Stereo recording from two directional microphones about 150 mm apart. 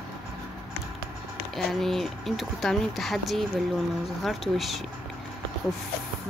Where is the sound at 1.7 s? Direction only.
Centre (ahead or behind).